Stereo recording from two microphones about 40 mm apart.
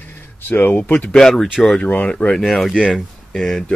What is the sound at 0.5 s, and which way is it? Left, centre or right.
Speech, left.